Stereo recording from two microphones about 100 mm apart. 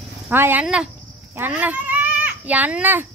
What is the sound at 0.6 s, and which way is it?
Speech, 10° right (ahead or behind).